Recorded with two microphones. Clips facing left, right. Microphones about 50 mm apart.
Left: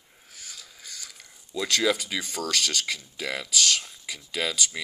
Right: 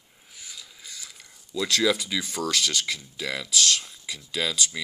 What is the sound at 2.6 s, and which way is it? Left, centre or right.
Speech, left.